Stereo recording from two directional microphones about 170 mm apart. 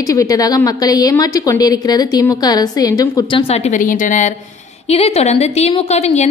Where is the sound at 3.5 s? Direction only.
45° left (ahead or behind).